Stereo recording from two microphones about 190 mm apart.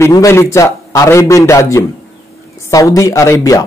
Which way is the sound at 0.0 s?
15° left (ahead or behind).